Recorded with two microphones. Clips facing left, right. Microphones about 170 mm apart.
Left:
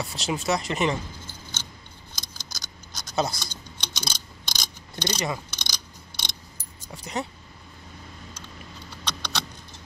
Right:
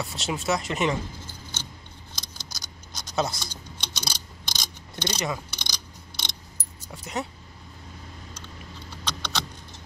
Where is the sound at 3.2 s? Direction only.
Centre (ahead or behind).